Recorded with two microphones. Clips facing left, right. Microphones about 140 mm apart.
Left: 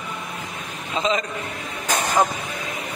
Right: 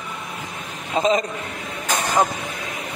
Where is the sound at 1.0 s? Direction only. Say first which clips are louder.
Right 4 dB; 40° right (ahead or behind).